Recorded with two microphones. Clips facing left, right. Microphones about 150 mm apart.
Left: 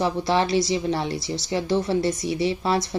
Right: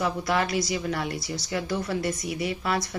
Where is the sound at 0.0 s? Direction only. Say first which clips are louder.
Left 4 dB; 25° left (ahead or behind).